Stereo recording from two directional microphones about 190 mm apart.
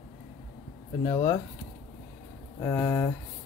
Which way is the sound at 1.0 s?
20° left (ahead or behind).